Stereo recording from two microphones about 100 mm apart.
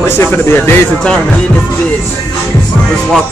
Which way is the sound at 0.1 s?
25° left (ahead or behind).